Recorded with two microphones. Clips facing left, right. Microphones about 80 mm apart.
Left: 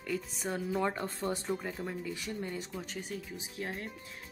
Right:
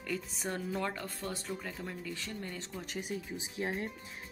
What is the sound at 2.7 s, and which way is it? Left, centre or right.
Music, centre.